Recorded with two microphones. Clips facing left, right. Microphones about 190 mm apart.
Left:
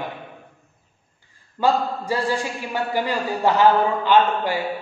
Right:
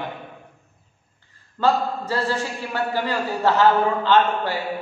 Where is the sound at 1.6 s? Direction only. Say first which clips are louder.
Even; 15° left (ahead or behind).